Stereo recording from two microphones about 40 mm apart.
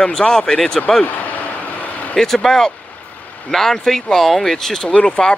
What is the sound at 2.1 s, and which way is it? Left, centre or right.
Speech, centre.